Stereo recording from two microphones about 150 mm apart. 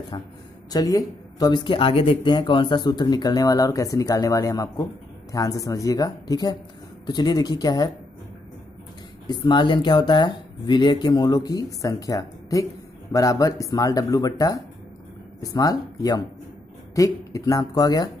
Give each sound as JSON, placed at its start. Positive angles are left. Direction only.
{"t": 0.1, "sound": "speech", "side_deg": 30}
{"t": 9.3, "sound": "speech", "side_deg": 30}